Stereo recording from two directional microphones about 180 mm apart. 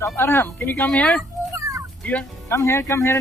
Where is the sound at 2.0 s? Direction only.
10° left (ahead or behind).